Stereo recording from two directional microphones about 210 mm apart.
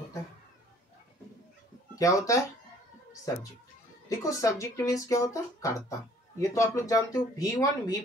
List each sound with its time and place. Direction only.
2.0 s speech: 15° left (ahead or behind)
4.2 s speech: 15° left (ahead or behind)